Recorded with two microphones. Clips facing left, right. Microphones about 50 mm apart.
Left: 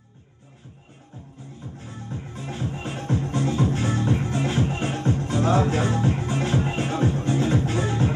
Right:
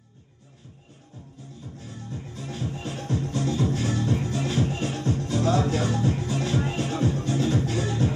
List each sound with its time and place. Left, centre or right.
1.8 s music: left